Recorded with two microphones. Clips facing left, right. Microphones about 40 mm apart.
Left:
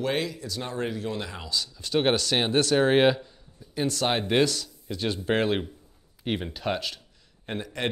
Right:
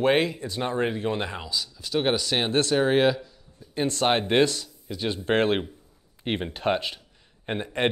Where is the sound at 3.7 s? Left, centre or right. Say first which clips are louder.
Right 3 dB; right.